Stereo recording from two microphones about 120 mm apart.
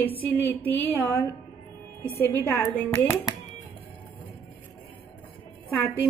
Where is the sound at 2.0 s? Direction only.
20° left (ahead or behind).